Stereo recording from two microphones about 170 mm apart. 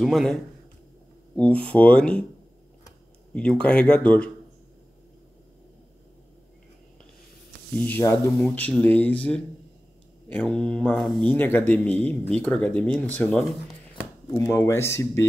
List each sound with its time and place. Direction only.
0.0 s a man's voice: centre (ahead or behind)
3.3 s speech: 5° left (ahead or behind)
7.7 s speech: 10° left (ahead or behind)